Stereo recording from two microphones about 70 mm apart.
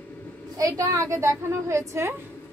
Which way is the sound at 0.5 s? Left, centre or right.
Right.